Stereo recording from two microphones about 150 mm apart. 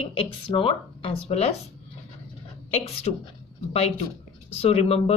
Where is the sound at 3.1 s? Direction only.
40° left (ahead or behind).